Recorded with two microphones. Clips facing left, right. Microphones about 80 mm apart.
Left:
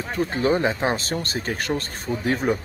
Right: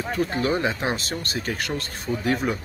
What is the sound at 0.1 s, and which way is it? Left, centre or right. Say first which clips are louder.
Speech: left 3 dB; left.